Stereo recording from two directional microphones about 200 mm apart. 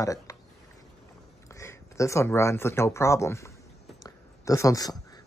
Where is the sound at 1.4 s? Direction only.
15° left (ahead or behind).